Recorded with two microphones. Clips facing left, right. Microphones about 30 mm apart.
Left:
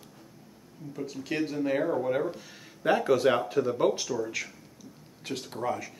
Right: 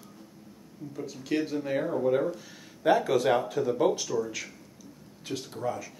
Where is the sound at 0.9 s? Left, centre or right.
Centre.